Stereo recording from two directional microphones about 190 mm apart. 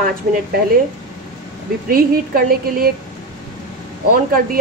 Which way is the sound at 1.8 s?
50° right (ahead or behind).